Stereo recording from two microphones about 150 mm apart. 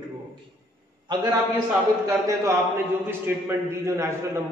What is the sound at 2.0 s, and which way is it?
A man's voice, 20° right (ahead or behind).